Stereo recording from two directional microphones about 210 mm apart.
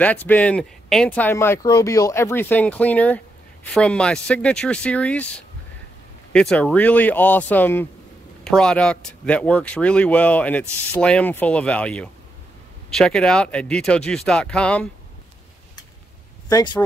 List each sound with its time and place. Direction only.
0.0 s speech: 5° left (ahead or behind)
16.4 s speech: 20° left (ahead or behind)